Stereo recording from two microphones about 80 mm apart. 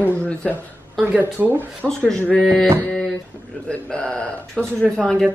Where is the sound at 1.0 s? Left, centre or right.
Right.